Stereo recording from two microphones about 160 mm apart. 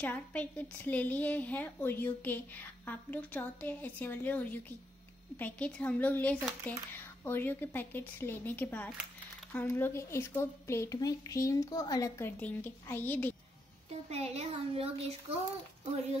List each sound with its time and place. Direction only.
0.0 s a woman's voice: 10° left (ahead or behind)
14.1 s speech: 40° right (ahead or behind)